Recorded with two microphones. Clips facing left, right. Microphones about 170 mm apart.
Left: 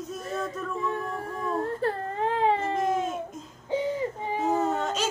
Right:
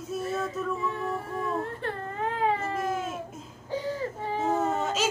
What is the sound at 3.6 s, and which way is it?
Baby cry, 20° left (ahead or behind).